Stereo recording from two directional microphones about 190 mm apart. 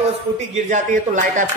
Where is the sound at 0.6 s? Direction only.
45° right (ahead or behind).